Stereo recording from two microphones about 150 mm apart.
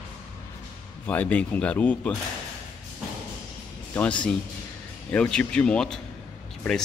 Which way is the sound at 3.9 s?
10° left (ahead or behind).